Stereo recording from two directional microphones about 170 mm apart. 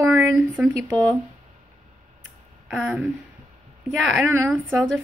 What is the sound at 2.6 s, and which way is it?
Speech, centre (ahead or behind).